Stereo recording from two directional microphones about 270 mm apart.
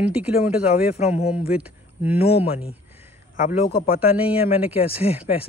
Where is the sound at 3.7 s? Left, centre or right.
Left.